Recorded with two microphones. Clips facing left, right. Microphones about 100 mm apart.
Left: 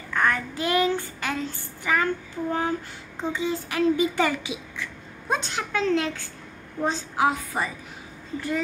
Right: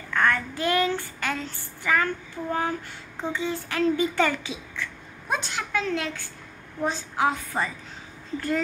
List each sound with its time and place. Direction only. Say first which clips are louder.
0.1 s child singing: even; 20° left (ahead or behind)
3.3 s speech: left 1 dB; 20° left (ahead or behind)
8.4 s speech: right 1 dB; 5° left (ahead or behind)